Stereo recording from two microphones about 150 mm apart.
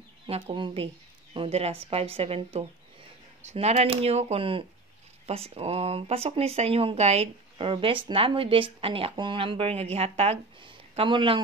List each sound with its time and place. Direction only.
0.3 s speech: 35° right (ahead or behind)